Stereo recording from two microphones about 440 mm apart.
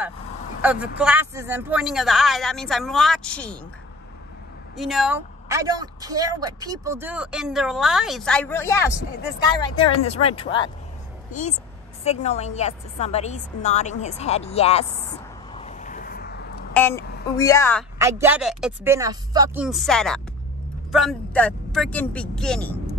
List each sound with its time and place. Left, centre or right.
0.6 s speech: centre
4.7 s speech: centre
9.8 s a woman's voice: centre
12.0 s a woman's voice: centre
15.5 s a sound: centre
16.7 s speech: centre
17.9 s speech: centre